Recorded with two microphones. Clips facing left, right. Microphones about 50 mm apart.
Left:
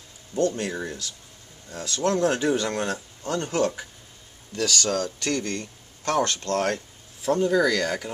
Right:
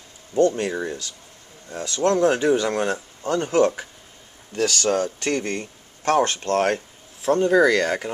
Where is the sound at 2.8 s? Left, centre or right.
Right.